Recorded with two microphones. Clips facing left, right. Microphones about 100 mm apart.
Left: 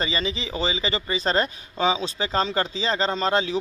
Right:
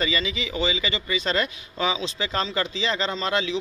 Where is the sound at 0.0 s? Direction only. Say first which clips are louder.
Even; 35° left (ahead or behind).